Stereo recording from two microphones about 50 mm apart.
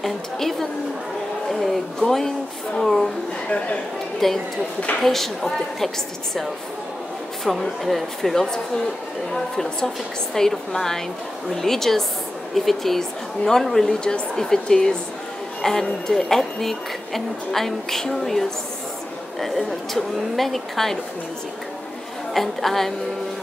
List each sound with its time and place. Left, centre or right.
0.0 s a woman's voice: centre
3.4 s speech: left
4.2 s a woman's voice: centre
7.5 s a woman's voice: centre
22.3 s a woman's voice: centre